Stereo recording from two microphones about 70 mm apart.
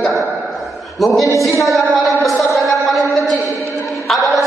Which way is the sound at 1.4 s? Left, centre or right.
Centre.